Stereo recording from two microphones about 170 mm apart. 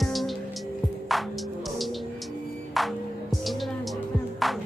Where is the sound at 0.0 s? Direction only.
Centre (ahead or behind).